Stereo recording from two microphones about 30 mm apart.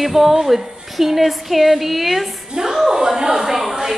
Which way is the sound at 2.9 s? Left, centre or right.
Right.